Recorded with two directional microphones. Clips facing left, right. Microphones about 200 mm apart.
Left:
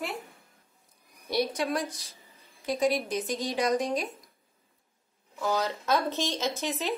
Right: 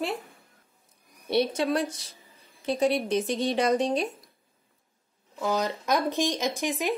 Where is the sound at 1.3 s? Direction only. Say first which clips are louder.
Right 4 dB; 25° right (ahead or behind).